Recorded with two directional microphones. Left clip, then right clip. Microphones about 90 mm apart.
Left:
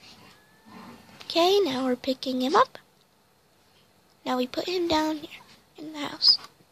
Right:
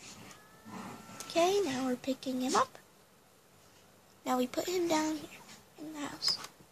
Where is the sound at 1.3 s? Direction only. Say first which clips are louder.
Left 7 dB; 90° left.